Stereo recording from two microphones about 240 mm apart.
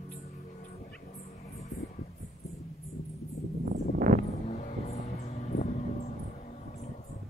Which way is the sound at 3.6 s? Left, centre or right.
Right.